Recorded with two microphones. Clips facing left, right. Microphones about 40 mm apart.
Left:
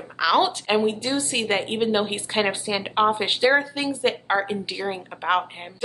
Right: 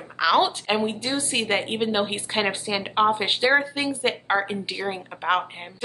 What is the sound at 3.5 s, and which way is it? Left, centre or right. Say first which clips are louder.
A woman's voice: even; centre.